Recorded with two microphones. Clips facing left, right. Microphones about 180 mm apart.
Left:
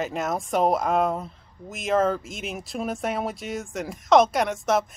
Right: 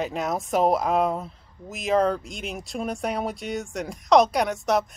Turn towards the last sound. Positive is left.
turn(degrees=0)  # may be behind; listen again after turning